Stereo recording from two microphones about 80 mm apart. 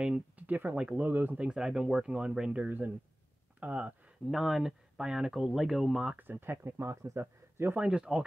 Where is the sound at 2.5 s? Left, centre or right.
Right.